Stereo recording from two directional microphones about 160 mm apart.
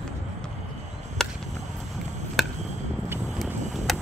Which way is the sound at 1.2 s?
5° left (ahead or behind).